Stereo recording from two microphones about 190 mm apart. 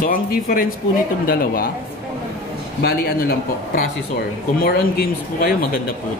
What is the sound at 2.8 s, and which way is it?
Speech, 55° left (ahead or behind).